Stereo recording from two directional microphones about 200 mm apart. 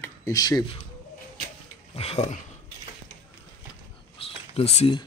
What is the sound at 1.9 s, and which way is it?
Speech, 30° left (ahead or behind).